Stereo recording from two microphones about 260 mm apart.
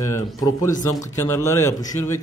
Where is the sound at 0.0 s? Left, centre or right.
Centre.